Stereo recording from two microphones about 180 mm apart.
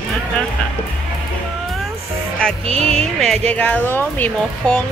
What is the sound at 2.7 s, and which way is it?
Music, 35° right (ahead or behind).